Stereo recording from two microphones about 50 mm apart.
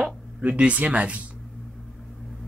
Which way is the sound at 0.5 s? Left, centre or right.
Right.